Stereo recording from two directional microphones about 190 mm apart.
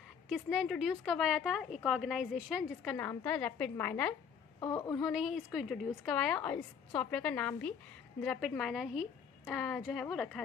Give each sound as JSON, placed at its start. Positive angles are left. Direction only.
{"t": 0.3, "sound": "a woman's voice", "side_deg": 0}
{"t": 5.0, "sound": "a woman's voice", "side_deg": 0}